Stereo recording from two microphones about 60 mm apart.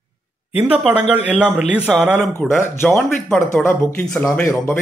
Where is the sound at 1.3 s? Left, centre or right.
Centre.